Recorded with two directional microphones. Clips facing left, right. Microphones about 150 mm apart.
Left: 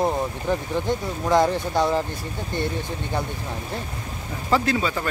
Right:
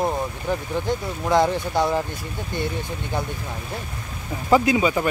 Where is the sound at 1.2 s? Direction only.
15° right (ahead or behind).